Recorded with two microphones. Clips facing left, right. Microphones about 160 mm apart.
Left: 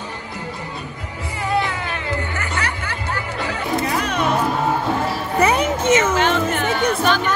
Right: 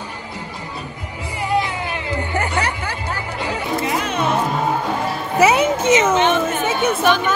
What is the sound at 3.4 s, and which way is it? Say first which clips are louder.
Chatter: right 1 dB; 20° right (ahead or behind).